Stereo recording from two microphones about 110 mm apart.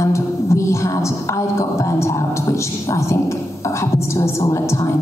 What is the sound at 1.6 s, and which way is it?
A woman's voice, 25° left (ahead or behind).